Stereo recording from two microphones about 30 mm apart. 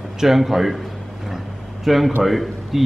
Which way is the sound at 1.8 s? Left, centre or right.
Centre.